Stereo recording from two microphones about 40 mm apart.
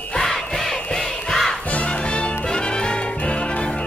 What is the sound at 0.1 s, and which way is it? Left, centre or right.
Crowd, centre.